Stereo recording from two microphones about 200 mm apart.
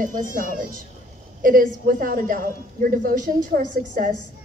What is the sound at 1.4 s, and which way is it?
A woman's voice, 45° right (ahead or behind).